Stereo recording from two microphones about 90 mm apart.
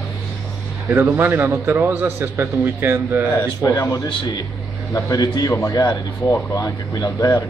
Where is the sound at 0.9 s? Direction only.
25° right (ahead or behind).